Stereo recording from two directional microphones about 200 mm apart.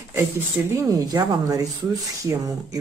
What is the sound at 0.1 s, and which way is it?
Speech, 15° right (ahead or behind).